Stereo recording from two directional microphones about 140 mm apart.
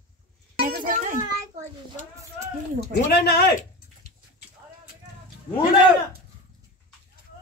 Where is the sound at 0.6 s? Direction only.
85° right.